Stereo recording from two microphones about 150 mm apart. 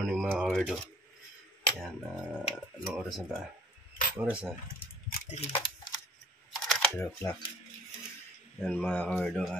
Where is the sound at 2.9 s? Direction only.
5° right (ahead or behind).